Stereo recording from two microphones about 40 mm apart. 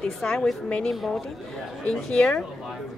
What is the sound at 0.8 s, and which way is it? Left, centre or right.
Speech, centre.